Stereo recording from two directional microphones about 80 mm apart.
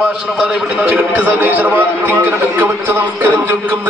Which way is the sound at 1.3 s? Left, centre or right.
Right.